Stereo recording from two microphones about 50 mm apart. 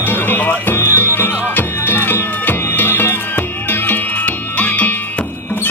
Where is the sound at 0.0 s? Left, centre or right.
Left.